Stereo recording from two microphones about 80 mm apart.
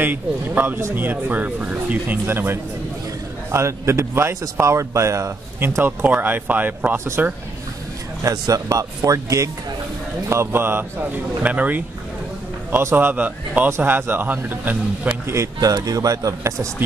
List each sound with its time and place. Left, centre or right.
0.0 s speech: right
5.8 s speech: right
8.2 s a man's voice: right
10.3 s speech: right
12.9 s speech: right
15.2 s a man's voice: right